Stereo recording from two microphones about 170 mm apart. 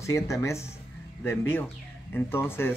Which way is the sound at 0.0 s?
15° left (ahead or behind).